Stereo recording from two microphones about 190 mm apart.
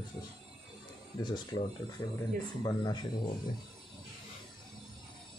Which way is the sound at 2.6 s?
20° left (ahead or behind).